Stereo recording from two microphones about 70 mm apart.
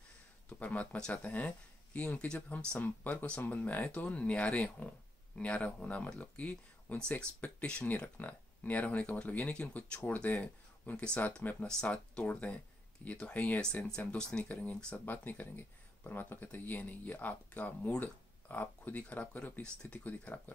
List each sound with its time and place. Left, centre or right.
0.6 s speech: centre
1.2 s speech: left
2.8 s speech: left
15.0 s speech: left